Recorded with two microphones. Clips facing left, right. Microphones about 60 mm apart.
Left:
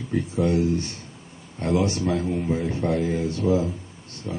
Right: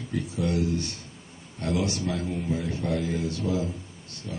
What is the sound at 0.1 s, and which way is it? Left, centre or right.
Speech, left.